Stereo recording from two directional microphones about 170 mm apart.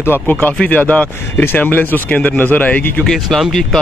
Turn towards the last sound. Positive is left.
turn(degrees=0)  # may be behind; listen again after turning